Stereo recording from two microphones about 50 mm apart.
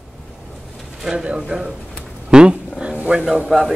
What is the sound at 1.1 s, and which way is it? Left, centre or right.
Speech, centre.